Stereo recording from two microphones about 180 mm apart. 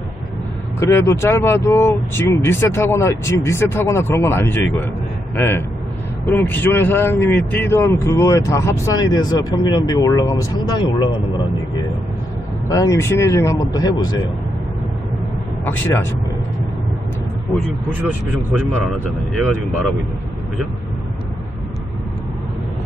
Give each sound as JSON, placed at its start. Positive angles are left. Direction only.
{"t": 0.7, "sound": "speech", "side_deg": 15}
{"t": 12.6, "sound": "speech", "side_deg": 20}
{"t": 15.6, "sound": "speech", "side_deg": 10}